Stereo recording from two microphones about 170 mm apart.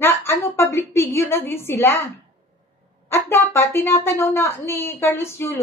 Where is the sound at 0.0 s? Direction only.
15° left (ahead or behind).